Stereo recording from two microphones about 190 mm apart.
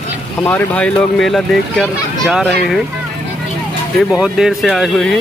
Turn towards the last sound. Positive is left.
turn(degrees=0)  # may be behind; listen again after turning